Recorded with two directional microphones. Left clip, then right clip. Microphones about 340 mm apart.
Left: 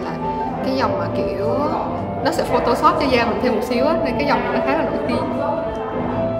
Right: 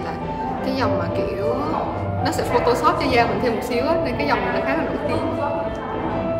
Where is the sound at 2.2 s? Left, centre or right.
Centre.